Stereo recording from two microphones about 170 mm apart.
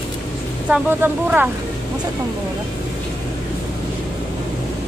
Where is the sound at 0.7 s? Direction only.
10° right (ahead or behind).